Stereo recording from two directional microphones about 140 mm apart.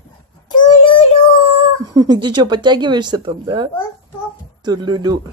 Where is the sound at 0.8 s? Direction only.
40° left (ahead or behind).